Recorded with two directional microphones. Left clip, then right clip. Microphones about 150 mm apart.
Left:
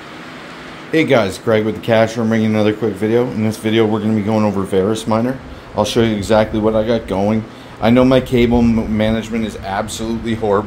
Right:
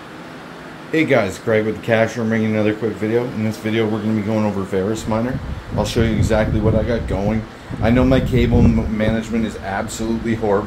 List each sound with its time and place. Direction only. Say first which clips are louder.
0.9 s a man's voice: left 3 dB; 30° left (ahead or behind)